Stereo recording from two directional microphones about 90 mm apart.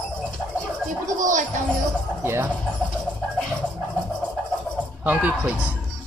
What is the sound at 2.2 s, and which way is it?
Speech, 25° right (ahead or behind).